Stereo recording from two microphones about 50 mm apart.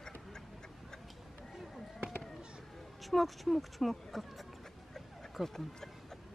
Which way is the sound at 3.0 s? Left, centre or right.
Centre.